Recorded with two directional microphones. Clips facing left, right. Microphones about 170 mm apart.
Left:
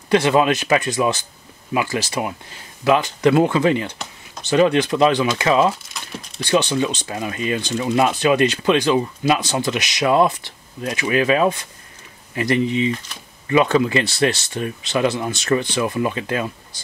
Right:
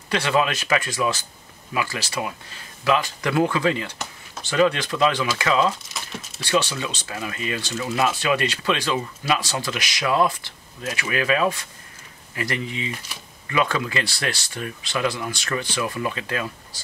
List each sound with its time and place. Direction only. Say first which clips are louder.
0.1 s speech: left 6 dB; 20° left (ahead or behind)
5.9 s crumpling: left 1 dB; 5° right (ahead or behind)
6.5 s speech: left 5 dB; 25° left (ahead or behind)
7.2 s speech: left 6 dB; 30° left (ahead or behind)